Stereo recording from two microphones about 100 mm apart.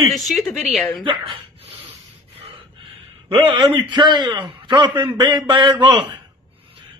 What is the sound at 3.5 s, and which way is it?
A man's voice, 50° right (ahead or behind).